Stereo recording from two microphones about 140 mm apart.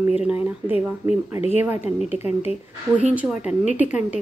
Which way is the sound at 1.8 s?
50° left (ahead or behind).